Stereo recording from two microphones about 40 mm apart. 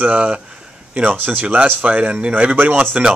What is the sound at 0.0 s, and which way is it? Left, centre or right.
Speech, right.